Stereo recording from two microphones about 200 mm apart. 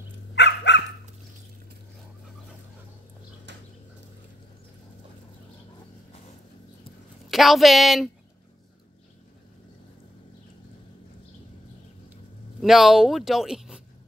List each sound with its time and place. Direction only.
0.3 s dog: 60° left (ahead or behind)
3.5 s a sound: 60° right (ahead or behind)
7.2 s speech: centre (ahead or behind)
12.5 s speech: centre (ahead or behind)